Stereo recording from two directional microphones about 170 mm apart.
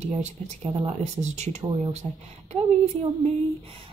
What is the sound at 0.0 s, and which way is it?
Speech, 40° right (ahead or behind).